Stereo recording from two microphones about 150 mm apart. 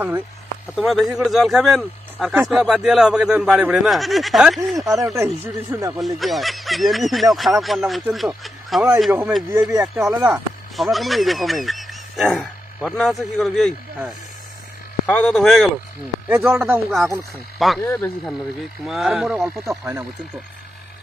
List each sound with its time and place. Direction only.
0.7 s speech: centre (ahead or behind)
5.0 s speech: 20° right (ahead or behind)
5.9 s speech: centre (ahead or behind)
9.6 s speech: 20° right (ahead or behind)
10.2 s speech: centre (ahead or behind)
15.0 s speech: 10° left (ahead or behind)
16.5 s speech: 15° right (ahead or behind)
17.6 s speech: centre (ahead or behind)
19.8 s speech: 15° right (ahead or behind)